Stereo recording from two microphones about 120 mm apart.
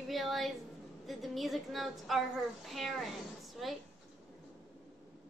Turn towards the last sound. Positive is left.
turn(degrees=0)  # may be behind; listen again after turning